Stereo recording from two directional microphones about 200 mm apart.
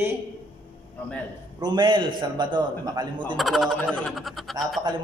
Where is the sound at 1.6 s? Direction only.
20° right (ahead or behind).